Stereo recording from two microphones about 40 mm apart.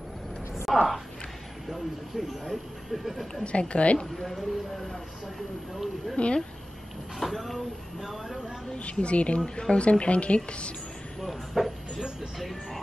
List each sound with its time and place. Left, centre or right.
0.7 s a woman's voice: centre
3.4 s a woman's voice: left
4.4 s speech: centre
6.1 s a woman's voice: left
7.2 s speech: centre
8.7 s a woman's voice: left
11.1 s speech: centre